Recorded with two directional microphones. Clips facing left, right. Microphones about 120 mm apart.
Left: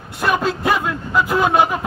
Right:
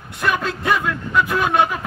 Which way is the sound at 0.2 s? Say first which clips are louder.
Left 3 dB; 25° left (ahead or behind).